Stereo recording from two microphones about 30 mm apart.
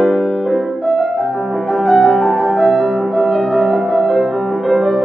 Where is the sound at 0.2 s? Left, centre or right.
Centre.